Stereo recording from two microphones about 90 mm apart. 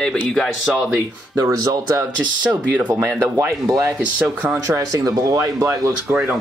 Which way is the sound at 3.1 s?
40° right (ahead or behind).